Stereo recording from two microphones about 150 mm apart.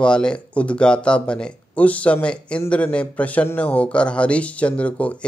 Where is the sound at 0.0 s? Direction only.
5° left (ahead or behind).